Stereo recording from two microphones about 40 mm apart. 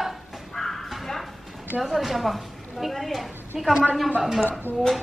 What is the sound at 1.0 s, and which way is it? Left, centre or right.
Music, centre.